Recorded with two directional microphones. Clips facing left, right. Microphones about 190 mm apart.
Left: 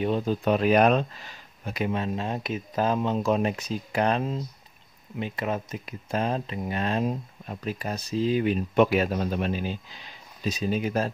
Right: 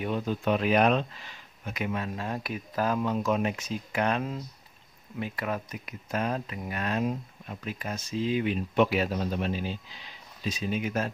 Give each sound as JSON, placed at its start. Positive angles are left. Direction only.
{"t": 0.0, "sound": "speech", "side_deg": 30}
{"t": 10.4, "sound": "speech", "side_deg": 40}